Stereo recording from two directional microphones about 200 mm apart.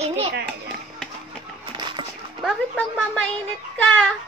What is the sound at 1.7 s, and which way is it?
Music, 20° right (ahead or behind).